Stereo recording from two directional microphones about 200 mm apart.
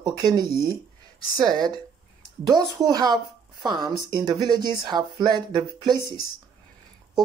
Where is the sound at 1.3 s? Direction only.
20° right (ahead or behind).